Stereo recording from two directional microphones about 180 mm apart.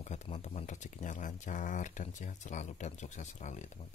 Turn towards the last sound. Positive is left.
turn(degrees=40)  # may be behind; listen again after turning